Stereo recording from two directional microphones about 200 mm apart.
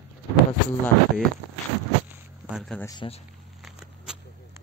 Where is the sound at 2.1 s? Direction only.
5° right (ahead or behind).